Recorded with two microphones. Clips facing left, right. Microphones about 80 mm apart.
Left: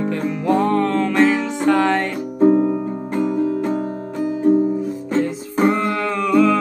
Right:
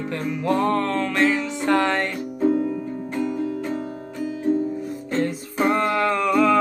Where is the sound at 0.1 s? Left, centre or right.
Centre.